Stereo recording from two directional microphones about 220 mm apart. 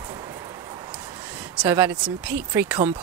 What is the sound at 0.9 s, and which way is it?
Speech, 5° right (ahead or behind).